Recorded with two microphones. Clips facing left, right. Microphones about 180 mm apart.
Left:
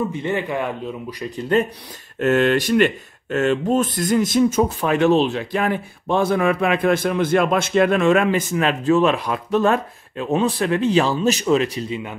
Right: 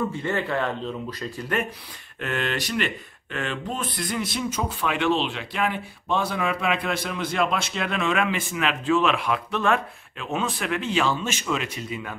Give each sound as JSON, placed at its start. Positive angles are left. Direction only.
{"t": 0.1, "sound": "speech", "side_deg": 20}
{"t": 2.1, "sound": "speech", "side_deg": 45}